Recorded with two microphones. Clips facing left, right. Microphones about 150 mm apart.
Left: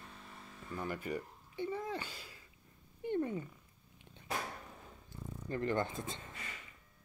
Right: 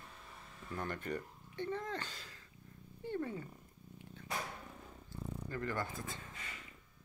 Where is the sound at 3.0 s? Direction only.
20° left (ahead or behind).